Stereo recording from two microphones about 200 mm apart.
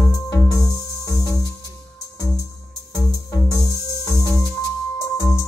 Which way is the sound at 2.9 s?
15° left (ahead or behind).